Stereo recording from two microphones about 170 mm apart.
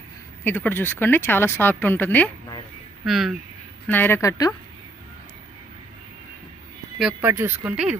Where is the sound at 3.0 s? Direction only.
Centre (ahead or behind).